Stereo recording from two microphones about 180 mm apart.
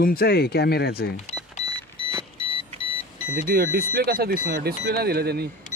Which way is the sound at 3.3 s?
55° right (ahead or behind).